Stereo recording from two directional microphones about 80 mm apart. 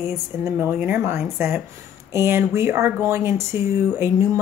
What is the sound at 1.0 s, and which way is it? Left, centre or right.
A woman's voice, right.